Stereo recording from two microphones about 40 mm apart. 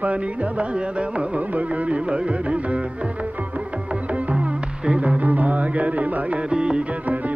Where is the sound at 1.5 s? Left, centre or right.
Right.